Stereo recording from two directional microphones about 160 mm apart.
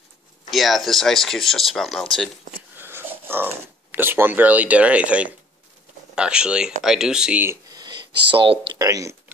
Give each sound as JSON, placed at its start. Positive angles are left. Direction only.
{"t": 0.5, "sound": "speech", "side_deg": 0}
{"t": 2.8, "sound": "speech", "side_deg": -15}
{"t": 8.3, "sound": "speech", "side_deg": -30}
{"t": 8.8, "sound": "speech", "side_deg": -20}